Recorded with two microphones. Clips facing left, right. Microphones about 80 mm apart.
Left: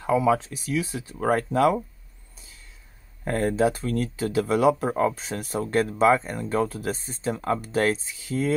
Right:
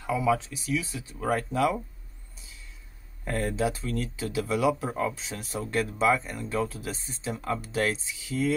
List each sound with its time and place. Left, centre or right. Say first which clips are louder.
0.0 s speech: left 5 dB; left
2.3 s a sound: left 1 dB; left
3.3 s speech: left 5 dB; left